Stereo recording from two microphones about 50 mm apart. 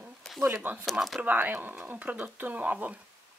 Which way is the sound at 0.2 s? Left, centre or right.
Centre.